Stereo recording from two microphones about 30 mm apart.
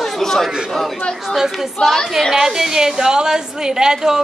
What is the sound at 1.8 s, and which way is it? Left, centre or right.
Speech, left.